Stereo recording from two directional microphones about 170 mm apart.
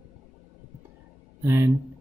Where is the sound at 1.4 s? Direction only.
15° right (ahead or behind).